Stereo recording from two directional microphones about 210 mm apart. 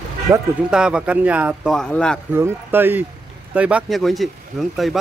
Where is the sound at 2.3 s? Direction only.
10° right (ahead or behind).